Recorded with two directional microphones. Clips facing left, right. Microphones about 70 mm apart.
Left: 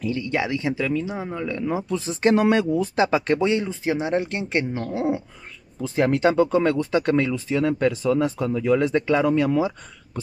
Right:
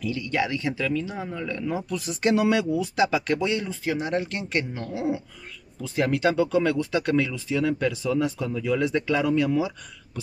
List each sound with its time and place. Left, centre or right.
0.0 s speech: left